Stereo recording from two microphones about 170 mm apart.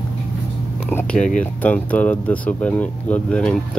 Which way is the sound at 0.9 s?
10° left (ahead or behind).